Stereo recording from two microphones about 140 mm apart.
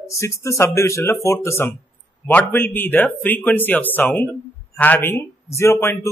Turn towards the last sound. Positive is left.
turn(degrees=20)  # may be behind; listen again after turning